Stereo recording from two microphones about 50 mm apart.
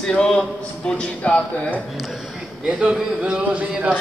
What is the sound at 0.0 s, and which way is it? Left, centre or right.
Speech, centre.